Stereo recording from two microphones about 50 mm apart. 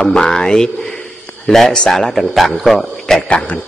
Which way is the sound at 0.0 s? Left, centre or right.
Centre.